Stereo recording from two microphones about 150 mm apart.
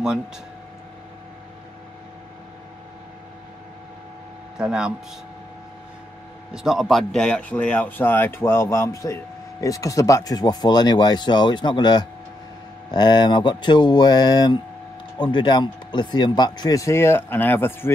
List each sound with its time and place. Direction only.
4.6 s speech: 5° right (ahead or behind)
6.5 s speech: 5° right (ahead or behind); by 17.9 s 15° left (ahead or behind)